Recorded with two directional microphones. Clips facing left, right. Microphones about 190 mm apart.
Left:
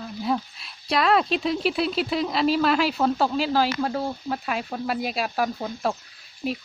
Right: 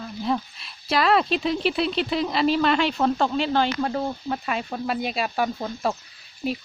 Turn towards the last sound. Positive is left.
turn(degrees=0)  # may be behind; listen again after turning